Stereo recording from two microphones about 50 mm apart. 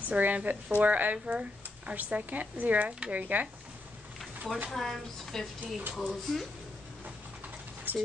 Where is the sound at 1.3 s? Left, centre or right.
Right.